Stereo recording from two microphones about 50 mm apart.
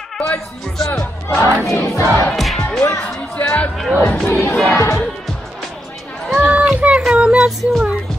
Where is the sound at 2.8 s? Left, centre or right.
Left.